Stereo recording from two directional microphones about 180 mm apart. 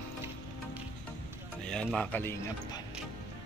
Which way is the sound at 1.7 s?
5° left (ahead or behind).